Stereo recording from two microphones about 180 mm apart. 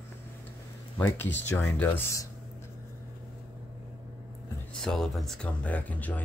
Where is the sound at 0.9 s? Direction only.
10° left (ahead or behind).